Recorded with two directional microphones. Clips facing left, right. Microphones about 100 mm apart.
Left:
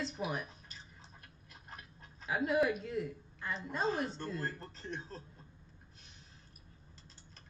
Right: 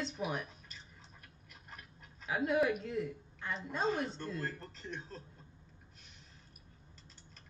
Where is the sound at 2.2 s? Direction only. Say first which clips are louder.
Even; centre (ahead or behind).